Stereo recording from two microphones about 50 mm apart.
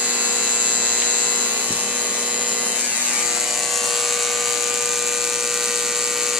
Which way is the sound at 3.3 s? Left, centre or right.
Centre.